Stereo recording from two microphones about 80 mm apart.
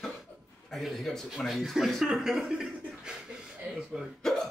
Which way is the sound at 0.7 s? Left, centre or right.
Centre.